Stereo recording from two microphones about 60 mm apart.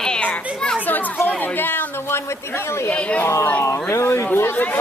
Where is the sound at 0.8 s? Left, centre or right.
Left.